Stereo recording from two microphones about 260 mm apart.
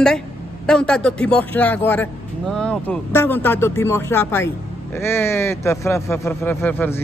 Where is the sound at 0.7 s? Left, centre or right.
Centre.